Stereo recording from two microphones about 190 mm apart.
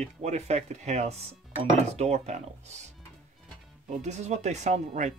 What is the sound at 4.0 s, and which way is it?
Speech, 35° right (ahead or behind).